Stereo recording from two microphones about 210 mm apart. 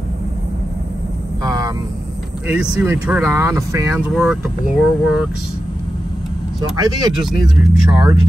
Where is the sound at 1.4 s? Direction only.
20° right (ahead or behind).